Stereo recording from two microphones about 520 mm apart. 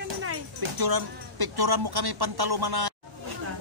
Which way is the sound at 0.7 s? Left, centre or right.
Right.